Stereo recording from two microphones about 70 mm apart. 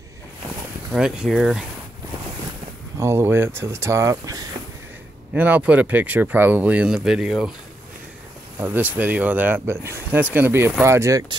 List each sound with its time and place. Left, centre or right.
0.9 s speech: centre
3.0 s speech: right
5.3 s speech: right
6.9 s speech: centre
8.5 s speech: right